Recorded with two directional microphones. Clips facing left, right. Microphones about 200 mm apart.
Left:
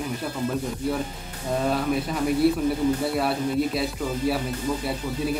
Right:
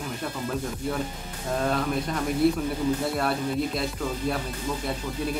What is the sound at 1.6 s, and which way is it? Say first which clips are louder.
Speech: left 2 dB; 5° left (ahead or behind).